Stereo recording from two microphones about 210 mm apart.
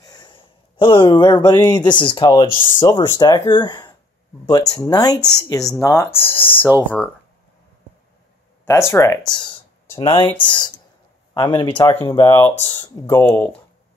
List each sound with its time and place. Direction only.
0.0 s speech: 20° left (ahead or behind)
8.6 s speech: 15° left (ahead or behind)
9.3 s a sound: 20° left (ahead or behind)
10.3 s speech: 20° left (ahead or behind)